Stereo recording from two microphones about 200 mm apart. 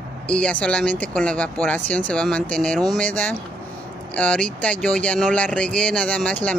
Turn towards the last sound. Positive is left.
turn(degrees=5)  # may be behind; listen again after turning